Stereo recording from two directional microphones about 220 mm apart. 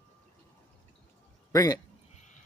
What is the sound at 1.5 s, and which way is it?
Speech, 15° left (ahead or behind).